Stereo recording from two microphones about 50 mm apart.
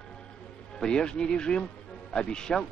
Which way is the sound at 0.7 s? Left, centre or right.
Centre.